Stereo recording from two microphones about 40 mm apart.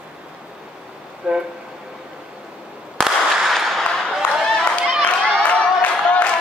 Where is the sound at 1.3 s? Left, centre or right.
Right.